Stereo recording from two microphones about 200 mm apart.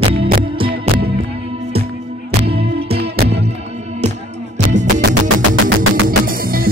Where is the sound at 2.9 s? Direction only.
55° right (ahead or behind).